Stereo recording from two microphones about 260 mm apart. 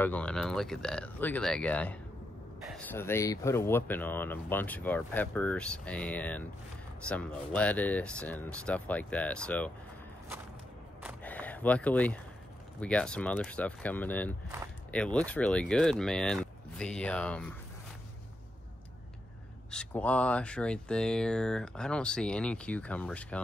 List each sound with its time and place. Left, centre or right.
0.0 s speech: centre
11.2 s a sound: centre
12.8 s speech: centre
19.7 s speech: centre